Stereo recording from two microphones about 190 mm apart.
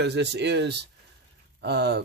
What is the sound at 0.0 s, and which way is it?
Speech, 65° right (ahead or behind).